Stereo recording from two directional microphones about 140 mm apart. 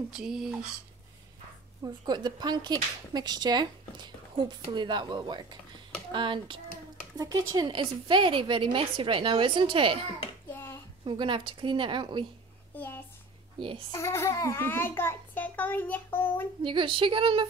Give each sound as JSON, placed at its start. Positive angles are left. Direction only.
{"t": 0.2, "sound": "speech", "side_deg": -5}
{"t": 2.0, "sound": "speech", "side_deg": -30}
{"t": 11.1, "sound": "speech", "side_deg": -35}
{"t": 12.7, "sound": "a child's voice", "side_deg": 15}
{"t": 13.6, "sound": "speech", "side_deg": -40}
{"t": 13.9, "sound": "a child's voice", "side_deg": 20}
{"t": 16.6, "sound": "speech", "side_deg": -35}